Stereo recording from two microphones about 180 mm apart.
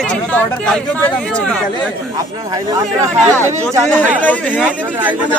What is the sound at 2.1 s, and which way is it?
Speech, 20° right (ahead or behind).